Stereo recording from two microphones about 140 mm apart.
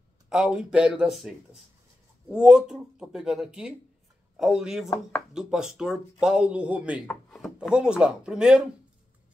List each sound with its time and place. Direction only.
0.3 s speech: 5° right (ahead or behind)
4.8 s speech: 15° left (ahead or behind)
5.3 s speech: 5° right (ahead or behind)
7.1 s wood: 5° left (ahead or behind)
7.7 s speech: 5° right (ahead or behind)